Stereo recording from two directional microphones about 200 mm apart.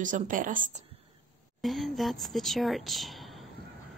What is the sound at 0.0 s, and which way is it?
Speech, 40° right (ahead or behind).